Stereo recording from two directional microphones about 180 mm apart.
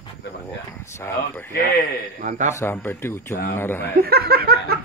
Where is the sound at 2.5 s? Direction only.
10° left (ahead or behind).